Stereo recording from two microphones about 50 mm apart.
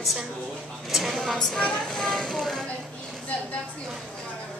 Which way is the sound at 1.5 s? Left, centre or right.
Centre.